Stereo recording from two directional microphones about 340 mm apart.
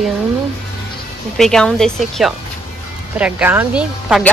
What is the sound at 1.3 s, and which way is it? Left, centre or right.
Speech, centre.